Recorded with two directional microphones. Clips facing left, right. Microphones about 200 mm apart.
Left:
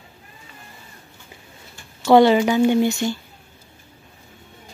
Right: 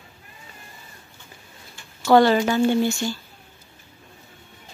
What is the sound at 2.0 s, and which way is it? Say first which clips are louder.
Speech: left 3 dB; 20° left (ahead or behind).